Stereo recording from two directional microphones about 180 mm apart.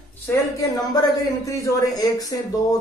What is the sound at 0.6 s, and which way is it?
Speech, 20° left (ahead or behind).